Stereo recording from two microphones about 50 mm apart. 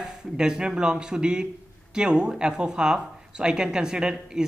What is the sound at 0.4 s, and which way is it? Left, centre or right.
A man's voice, centre.